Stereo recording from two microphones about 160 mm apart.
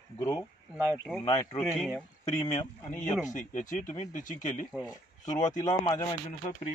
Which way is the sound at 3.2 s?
50° left (ahead or behind).